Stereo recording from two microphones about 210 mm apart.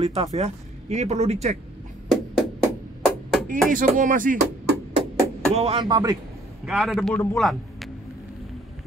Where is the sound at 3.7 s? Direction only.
40° right (ahead or behind).